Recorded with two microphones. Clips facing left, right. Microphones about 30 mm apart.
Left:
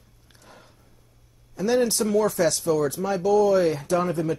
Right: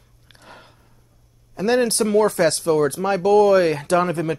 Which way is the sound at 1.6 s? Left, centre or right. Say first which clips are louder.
Right 3 dB; right.